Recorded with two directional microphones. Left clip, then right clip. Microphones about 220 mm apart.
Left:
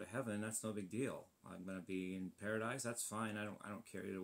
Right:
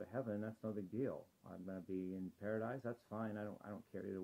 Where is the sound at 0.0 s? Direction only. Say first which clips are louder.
Even; 30° left (ahead or behind).